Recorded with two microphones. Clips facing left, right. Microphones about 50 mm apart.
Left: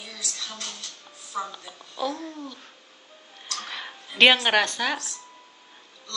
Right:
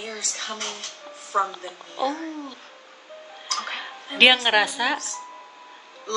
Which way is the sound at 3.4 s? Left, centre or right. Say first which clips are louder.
Right 5 dB; right.